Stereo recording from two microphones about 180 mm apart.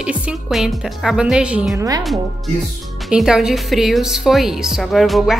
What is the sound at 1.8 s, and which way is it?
Speech, 20° right (ahead or behind).